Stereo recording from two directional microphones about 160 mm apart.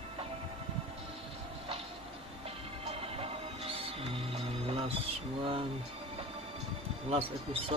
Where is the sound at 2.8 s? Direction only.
40° right (ahead or behind).